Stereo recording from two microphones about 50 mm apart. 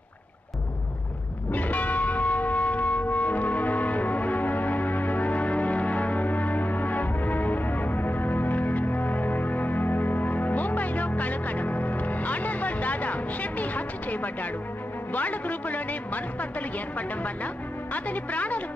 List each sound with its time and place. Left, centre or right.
1.5 s church bell: left
15.1 s a man's voice: left
17.9 s speech: left